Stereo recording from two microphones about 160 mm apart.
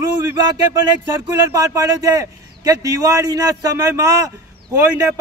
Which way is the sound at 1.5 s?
20° right (ahead or behind).